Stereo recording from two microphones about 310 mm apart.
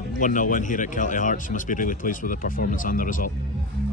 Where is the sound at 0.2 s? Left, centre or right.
Left.